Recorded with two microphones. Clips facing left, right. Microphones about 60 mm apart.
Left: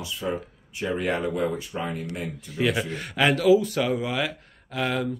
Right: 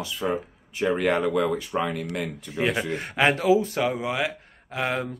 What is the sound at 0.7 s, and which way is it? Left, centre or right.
Speech, right.